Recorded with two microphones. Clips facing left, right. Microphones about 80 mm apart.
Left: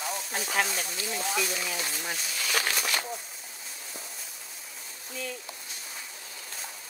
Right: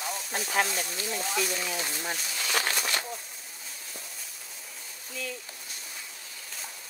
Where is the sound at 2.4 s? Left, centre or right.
Right.